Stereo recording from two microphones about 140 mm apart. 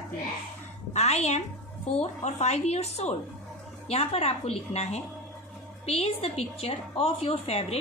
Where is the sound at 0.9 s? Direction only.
50° left (ahead or behind).